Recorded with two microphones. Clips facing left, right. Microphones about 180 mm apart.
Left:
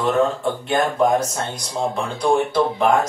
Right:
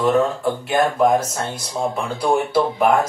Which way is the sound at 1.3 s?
5° right (ahead or behind).